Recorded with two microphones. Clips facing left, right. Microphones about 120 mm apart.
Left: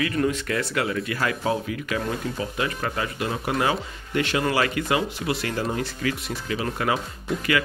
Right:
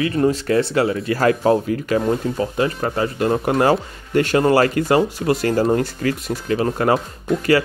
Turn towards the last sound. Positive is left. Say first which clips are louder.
# right 8 dB
turn(degrees=-40)  # may be behind; listen again after turning